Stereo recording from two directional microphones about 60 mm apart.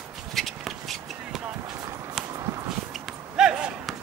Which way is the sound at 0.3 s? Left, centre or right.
Centre.